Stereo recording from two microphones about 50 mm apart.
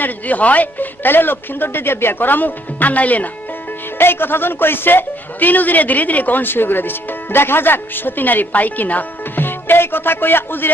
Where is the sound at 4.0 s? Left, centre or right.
Left.